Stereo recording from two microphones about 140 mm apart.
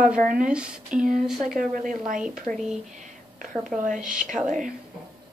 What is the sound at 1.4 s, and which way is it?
Speech, 70° right (ahead or behind).